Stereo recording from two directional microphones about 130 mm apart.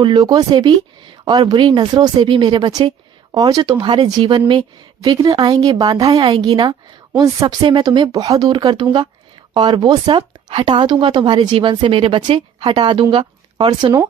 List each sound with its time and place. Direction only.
0.0 s speech: 35° right (ahead or behind)